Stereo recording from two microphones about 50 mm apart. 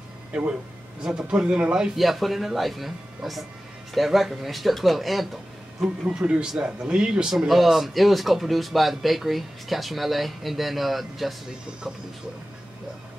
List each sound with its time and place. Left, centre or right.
0.3 s speech: right
2.0 s speech: centre
6.0 s speech: centre